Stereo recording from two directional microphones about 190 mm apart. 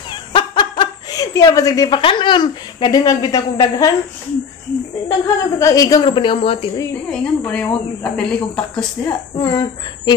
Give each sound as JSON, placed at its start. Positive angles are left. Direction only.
{"t": 0.1, "sound": "speech", "side_deg": 25}
{"t": 5.0, "sound": "a woman's voice", "side_deg": 20}
{"t": 7.1, "sound": "a woman's voice", "side_deg": 5}